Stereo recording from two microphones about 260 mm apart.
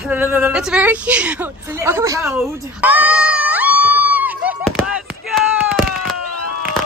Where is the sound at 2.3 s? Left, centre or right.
Centre.